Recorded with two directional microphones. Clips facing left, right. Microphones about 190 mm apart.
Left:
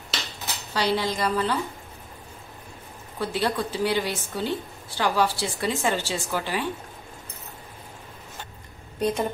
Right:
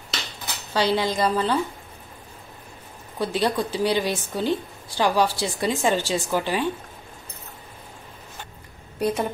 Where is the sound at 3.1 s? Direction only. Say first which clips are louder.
Right 3 dB; 15° right (ahead or behind).